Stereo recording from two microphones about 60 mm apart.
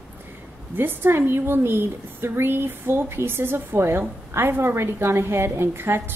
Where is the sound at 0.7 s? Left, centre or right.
Right.